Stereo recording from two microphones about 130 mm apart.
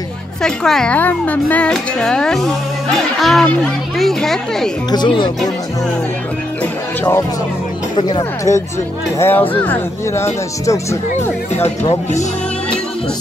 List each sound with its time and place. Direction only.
0.4 s speech: 5° left (ahead or behind)
4.9 s speech: 35° left (ahead or behind)
6.6 s music: 15° left (ahead or behind)
7.9 s speech: 35° left (ahead or behind)
9.2 s speech: 15° left (ahead or behind)
11.5 s speech: 55° left (ahead or behind)